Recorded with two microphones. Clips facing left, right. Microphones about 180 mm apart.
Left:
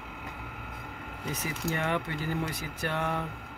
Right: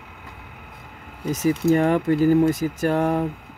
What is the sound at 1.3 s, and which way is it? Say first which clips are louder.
Speech: right 15 dB; 40° right (ahead or behind).